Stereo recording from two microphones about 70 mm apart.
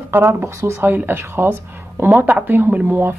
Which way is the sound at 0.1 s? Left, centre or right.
Right.